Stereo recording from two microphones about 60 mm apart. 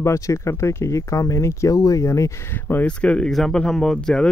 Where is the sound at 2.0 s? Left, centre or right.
Left.